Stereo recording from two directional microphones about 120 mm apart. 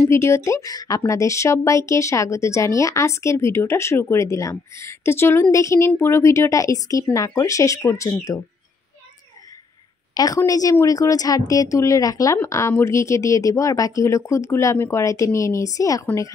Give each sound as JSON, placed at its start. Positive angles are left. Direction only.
{"t": 0.1, "sound": "speech", "side_deg": 25}
{"t": 10.1, "sound": "speech", "side_deg": 30}